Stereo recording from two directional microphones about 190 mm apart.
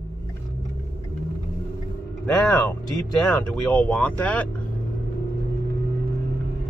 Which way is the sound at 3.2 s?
5° left (ahead or behind).